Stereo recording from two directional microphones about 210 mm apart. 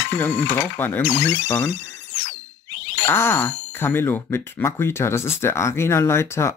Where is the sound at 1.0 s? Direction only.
60° left (ahead or behind).